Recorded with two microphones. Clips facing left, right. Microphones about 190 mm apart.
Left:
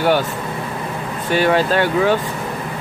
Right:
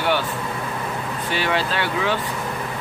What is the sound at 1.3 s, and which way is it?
Speech, 45° left (ahead or behind).